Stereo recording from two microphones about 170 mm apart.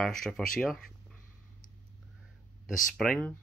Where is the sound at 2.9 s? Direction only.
5° left (ahead or behind).